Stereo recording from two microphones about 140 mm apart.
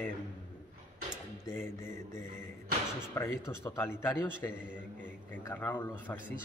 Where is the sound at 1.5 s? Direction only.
15° left (ahead or behind).